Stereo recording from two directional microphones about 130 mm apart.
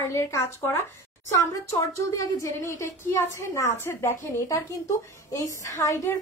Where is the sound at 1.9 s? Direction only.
25° left (ahead or behind).